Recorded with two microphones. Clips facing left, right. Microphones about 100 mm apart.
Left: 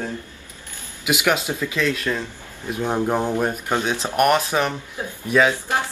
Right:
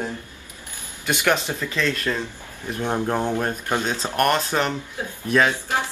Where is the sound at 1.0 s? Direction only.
10° left (ahead or behind).